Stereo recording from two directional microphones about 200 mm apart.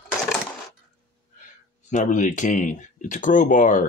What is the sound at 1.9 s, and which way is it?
Speech, 40° left (ahead or behind).